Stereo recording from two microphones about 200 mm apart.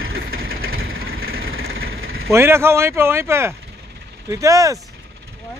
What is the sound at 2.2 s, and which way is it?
Speech, 15° right (ahead or behind).